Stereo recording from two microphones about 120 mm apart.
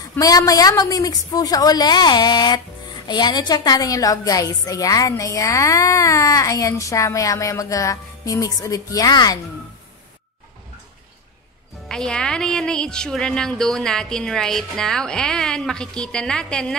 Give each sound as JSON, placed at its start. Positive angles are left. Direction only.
{"t": 0.2, "sound": "a woman's voice", "side_deg": 30}
{"t": 11.9, "sound": "speech", "side_deg": 5}